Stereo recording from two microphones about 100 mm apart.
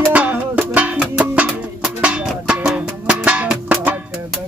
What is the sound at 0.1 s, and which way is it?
Music, 15° right (ahead or behind).